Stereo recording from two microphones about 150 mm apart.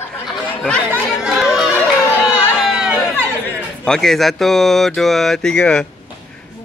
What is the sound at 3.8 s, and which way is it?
Speech, 5° left (ahead or behind).